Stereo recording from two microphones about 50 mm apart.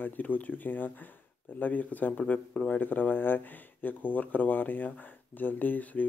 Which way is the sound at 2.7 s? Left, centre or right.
Left.